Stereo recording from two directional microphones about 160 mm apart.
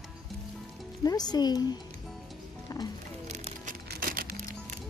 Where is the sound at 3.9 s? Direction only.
65° right (ahead or behind).